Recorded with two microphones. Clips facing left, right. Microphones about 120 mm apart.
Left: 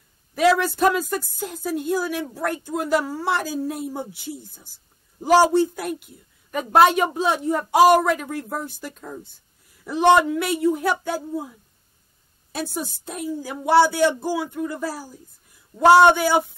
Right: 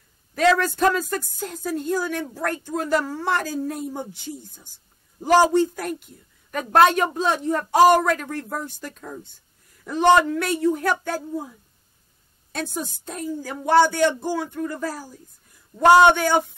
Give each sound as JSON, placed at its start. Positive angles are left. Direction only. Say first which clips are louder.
{"t": 0.3, "sound": "a woman's voice", "louder": "left 1 dB", "side_deg": 5}
{"t": 12.5, "sound": "a woman's voice", "louder": "left 1 dB", "side_deg": 5}